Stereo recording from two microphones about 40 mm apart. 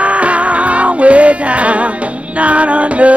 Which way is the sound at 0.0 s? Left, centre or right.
Right.